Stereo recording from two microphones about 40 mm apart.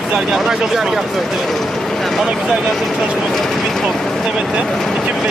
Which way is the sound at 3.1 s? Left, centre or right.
Centre.